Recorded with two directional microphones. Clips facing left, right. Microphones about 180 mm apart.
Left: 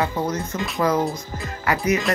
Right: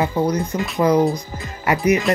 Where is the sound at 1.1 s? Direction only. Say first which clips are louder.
Right 2 dB; 15° right (ahead or behind).